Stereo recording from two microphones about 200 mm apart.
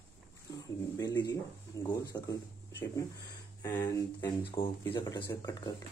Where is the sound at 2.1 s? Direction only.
15° left (ahead or behind).